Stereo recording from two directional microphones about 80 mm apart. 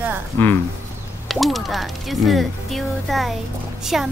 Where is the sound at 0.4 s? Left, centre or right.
Left.